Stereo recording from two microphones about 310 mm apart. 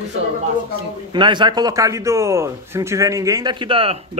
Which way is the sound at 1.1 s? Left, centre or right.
Centre.